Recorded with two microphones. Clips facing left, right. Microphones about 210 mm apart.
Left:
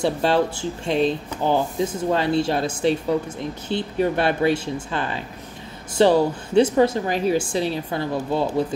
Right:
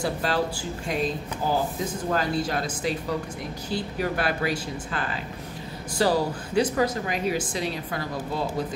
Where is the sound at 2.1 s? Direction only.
25° left (ahead or behind).